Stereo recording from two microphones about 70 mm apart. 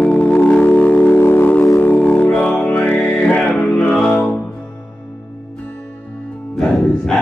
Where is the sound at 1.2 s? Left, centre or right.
Left.